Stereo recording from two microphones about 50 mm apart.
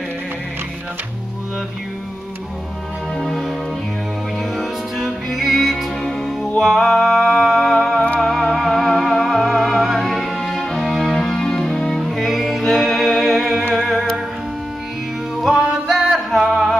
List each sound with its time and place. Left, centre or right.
3.2 s music: centre
4.6 s music: centre
12.0 s music: centre
15.4 s music: centre